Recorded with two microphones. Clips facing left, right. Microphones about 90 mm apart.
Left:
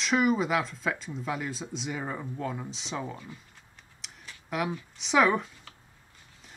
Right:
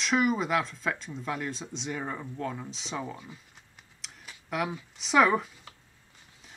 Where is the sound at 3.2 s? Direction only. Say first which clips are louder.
Left 2 dB; 20° right (ahead or behind).